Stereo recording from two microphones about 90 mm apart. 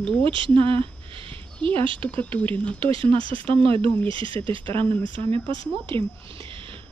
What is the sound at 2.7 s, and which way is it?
Speech, 85° right.